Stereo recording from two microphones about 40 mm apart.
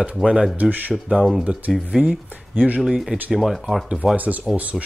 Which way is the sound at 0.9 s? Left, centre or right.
Centre.